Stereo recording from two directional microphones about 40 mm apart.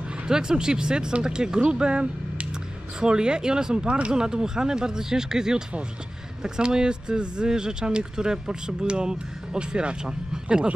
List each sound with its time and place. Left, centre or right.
0.3 s speech: centre